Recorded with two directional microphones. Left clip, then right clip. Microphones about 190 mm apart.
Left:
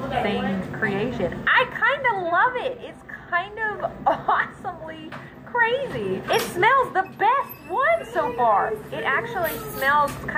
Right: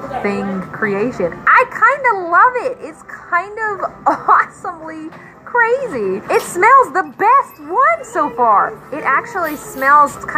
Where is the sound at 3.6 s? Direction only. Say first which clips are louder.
Right 6 dB; 30° right (ahead or behind).